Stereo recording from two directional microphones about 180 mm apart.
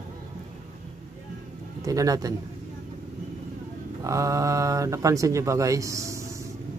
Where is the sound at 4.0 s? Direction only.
20° right (ahead or behind).